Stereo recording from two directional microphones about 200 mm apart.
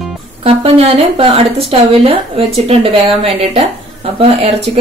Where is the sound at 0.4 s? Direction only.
30° right (ahead or behind).